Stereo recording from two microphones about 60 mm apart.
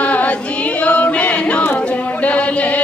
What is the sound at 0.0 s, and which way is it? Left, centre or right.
Singing, left.